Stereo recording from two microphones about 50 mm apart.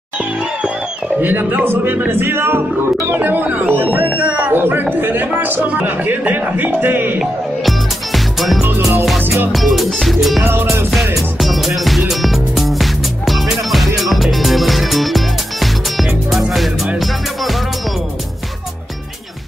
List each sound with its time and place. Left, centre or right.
1.2 s a man's voice: right
7.2 s music: centre